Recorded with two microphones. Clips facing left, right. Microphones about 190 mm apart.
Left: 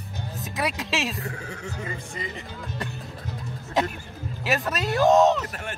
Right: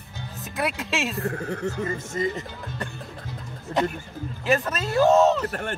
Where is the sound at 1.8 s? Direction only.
40° right (ahead or behind).